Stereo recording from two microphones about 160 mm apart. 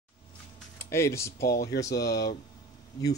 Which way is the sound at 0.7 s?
15° left (ahead or behind).